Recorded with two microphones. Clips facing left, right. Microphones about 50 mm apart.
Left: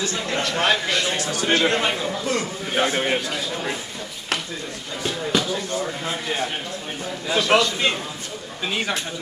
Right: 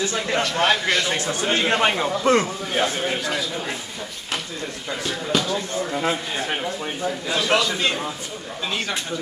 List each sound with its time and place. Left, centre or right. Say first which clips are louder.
0.0 s a man's voice: right 2 dB; centre
0.4 s a man's voice: even; centre
1.0 s a man's voice: even; right
2.8 s a man's voice: left 3 dB; left
5.0 s a man's voice: left 1 dB; centre
7.2 s a man's voice: left 3 dB; centre